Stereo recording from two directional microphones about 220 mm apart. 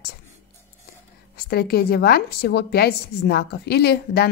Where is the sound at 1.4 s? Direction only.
45° left (ahead or behind).